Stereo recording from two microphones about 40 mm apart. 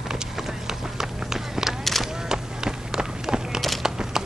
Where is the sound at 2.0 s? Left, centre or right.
Centre.